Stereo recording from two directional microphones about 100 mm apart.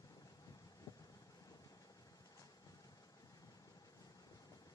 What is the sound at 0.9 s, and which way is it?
Vehicle, 30° left (ahead or behind).